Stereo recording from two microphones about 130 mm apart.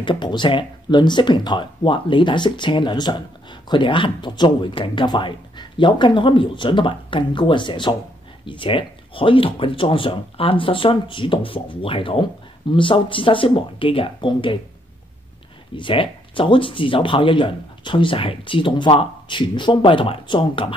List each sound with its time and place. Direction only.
0.0 s speech: 35° left (ahead or behind)
15.7 s speech: 40° left (ahead or behind)